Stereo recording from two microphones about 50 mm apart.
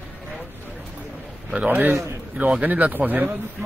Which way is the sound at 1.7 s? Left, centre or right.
Right.